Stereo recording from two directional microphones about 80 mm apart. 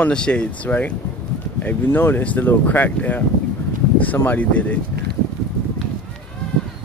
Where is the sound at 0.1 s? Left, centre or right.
Centre.